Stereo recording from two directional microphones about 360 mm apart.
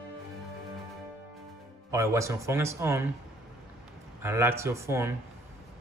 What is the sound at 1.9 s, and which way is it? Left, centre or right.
Speech, centre.